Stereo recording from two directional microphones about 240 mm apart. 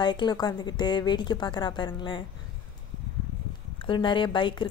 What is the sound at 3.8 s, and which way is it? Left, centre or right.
Speech, centre.